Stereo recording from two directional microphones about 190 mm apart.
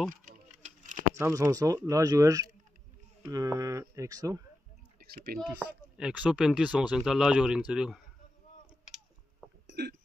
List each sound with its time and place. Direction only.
0.1 s a sound: 40° right (ahead or behind)
1.1 s speech: 15° right (ahead or behind)
4.9 s speech: 50° right (ahead or behind)
5.9 s speech: 5° right (ahead or behind)
9.7 s hiccup: 60° right (ahead or behind)